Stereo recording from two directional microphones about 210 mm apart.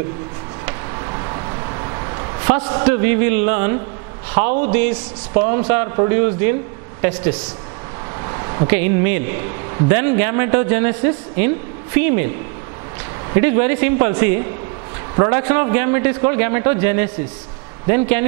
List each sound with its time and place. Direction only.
0.7 s a sound: 20° right (ahead or behind)
2.7 s a man's voice: 10° right (ahead or behind)
13.3 s a man's voice: 15° right (ahead or behind)